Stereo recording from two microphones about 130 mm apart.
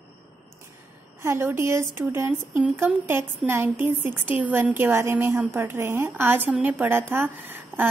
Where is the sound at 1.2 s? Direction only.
20° right (ahead or behind).